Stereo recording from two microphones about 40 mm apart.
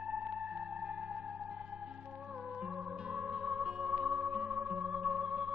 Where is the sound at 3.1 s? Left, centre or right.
Right.